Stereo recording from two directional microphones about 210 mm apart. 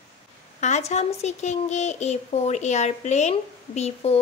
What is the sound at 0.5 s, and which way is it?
Speech, 35° left (ahead or behind).